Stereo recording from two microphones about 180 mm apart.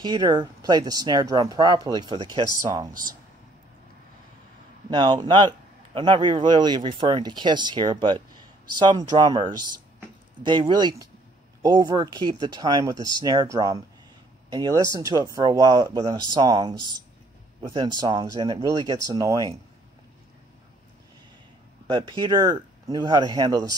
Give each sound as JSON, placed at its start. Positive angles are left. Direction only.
{"t": 0.0, "sound": "speech", "side_deg": -25}
{"t": 4.8, "sound": "speech", "side_deg": -25}
{"t": 12.9, "sound": "speech", "side_deg": 25}
{"t": 13.2, "sound": "speech", "side_deg": -20}
{"t": 21.8, "sound": "speech", "side_deg": -25}